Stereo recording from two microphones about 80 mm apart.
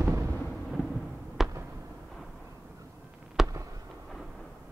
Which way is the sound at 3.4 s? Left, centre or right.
Right.